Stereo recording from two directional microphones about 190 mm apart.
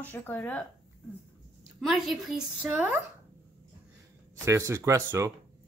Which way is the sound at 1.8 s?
Centre (ahead or behind).